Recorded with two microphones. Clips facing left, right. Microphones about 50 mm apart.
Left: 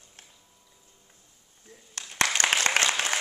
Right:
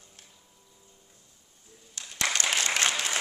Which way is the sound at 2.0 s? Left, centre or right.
Left.